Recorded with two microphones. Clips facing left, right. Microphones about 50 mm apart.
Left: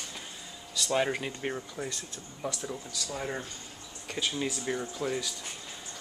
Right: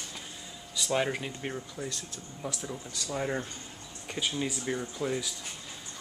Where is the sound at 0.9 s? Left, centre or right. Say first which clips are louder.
Left 1 dB; centre.